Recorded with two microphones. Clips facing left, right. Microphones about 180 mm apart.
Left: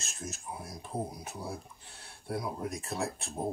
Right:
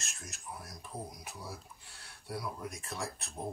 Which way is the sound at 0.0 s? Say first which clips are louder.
Left 7 dB; 30° left (ahead or behind).